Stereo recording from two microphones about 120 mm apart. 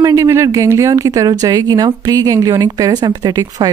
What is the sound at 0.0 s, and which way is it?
Speech, 25° right (ahead or behind).